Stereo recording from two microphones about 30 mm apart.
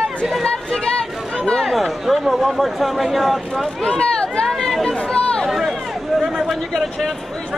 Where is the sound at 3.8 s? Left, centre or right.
Left.